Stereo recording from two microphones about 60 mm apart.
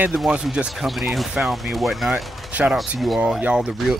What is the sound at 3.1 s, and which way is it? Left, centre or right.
Speech, centre.